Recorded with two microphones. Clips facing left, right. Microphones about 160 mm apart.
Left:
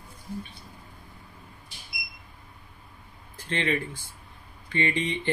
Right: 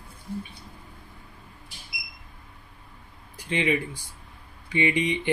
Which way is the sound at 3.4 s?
15° right (ahead or behind).